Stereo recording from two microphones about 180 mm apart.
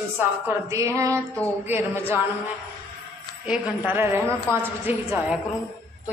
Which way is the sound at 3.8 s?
10° right (ahead or behind).